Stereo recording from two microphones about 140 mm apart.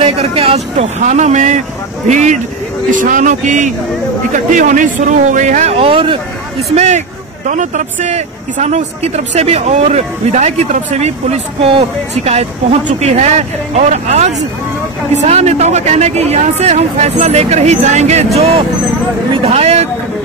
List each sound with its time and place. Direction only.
0.0 s speech: 45° right (ahead or behind)
6.7 s speech: 50° right (ahead or behind)
13.0 s speech: 50° right (ahead or behind)